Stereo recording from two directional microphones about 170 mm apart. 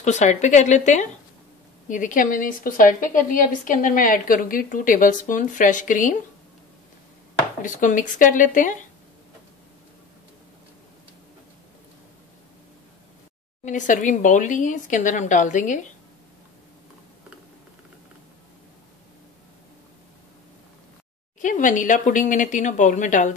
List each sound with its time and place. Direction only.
0.0 s a woman's voice: 45° left (ahead or behind)
7.6 s a woman's voice: 50° left (ahead or behind)
13.7 s a woman's voice: 50° left (ahead or behind)
21.4 s a woman's voice: 50° left (ahead or behind)